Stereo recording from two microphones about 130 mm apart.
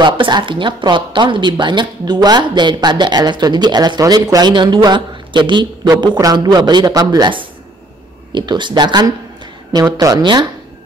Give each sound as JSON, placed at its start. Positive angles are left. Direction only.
{"t": 0.0, "sound": "speech", "side_deg": -35}